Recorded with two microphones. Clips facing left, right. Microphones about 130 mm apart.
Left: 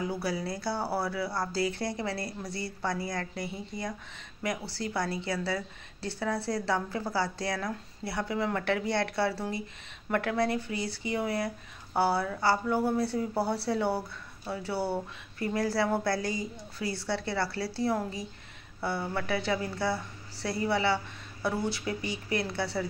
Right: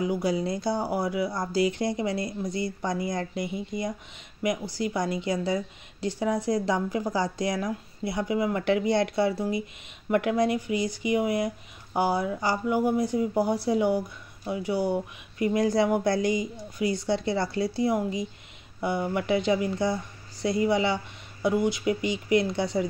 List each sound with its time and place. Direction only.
0.0 s speech: 20° right (ahead or behind)